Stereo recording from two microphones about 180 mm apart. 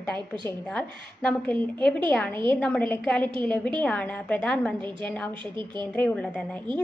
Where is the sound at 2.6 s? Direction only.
10° left (ahead or behind).